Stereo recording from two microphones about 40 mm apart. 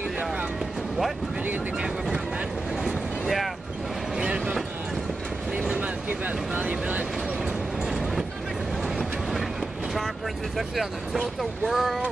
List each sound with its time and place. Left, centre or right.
2.8 s vehicle: centre
4.2 s train: right
5.8 s a sound: right
7.9 s vehicle: centre
10.8 s speech: centre